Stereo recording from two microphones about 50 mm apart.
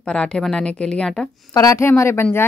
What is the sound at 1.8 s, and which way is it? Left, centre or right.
Speech, left.